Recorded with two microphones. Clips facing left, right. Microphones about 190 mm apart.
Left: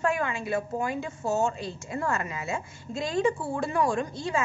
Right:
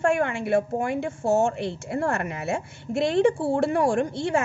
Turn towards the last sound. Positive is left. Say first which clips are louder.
# right 5 dB
turn(degrees=-70)  # may be behind; listen again after turning